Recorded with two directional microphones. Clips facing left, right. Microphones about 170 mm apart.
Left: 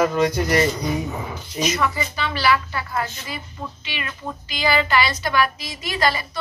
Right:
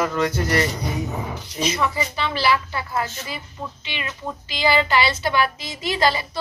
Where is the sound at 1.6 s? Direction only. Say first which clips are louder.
Even; 25° right (ahead or behind).